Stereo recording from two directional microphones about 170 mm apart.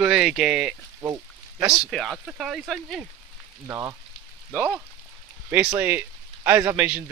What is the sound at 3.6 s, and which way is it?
Speech, 20° right (ahead or behind).